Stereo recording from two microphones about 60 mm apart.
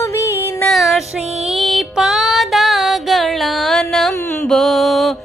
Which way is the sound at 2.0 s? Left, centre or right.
Centre.